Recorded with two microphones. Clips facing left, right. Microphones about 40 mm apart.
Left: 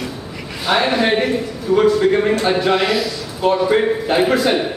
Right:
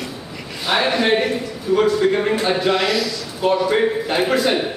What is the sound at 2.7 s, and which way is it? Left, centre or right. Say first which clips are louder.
Speech: left 2 dB; centre.